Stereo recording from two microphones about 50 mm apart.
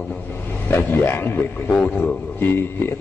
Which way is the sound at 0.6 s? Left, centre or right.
Left.